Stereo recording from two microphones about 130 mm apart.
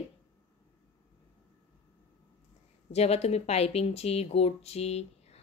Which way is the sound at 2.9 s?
55° left (ahead or behind).